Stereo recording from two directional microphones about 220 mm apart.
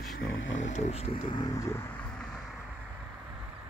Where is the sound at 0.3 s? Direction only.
60° left (ahead or behind).